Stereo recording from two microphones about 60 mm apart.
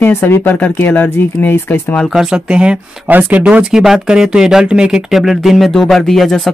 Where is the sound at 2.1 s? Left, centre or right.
Centre.